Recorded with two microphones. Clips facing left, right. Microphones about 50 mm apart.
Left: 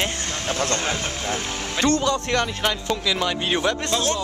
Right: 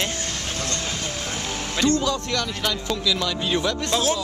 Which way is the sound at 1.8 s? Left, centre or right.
Left.